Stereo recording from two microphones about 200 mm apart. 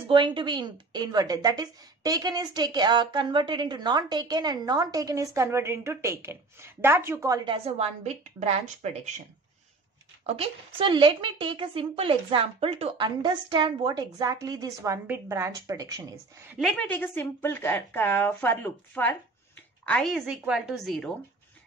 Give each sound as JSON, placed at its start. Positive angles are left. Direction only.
{"t": 0.1, "sound": "a woman's voice", "side_deg": -25}
{"t": 10.2, "sound": "a woman's voice", "side_deg": -30}
{"t": 16.5, "sound": "a woman's voice", "side_deg": 0}